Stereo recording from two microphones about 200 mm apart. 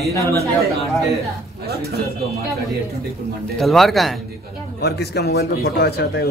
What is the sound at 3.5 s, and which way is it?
Speech, centre (ahead or behind).